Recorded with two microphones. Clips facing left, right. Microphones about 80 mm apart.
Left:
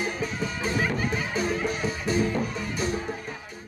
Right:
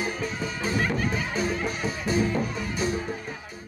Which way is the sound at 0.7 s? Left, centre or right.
Centre.